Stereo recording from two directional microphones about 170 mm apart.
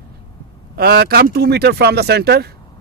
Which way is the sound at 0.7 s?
65° right (ahead or behind).